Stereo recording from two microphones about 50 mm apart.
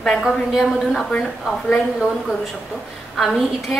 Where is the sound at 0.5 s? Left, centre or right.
Centre.